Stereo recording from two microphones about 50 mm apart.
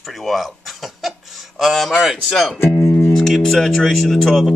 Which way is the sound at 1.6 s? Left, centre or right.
Centre.